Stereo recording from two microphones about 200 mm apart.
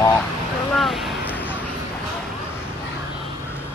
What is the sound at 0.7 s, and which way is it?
Vehicle, centre (ahead or behind).